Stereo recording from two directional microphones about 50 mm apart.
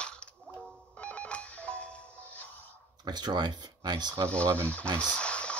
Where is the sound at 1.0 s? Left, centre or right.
Left.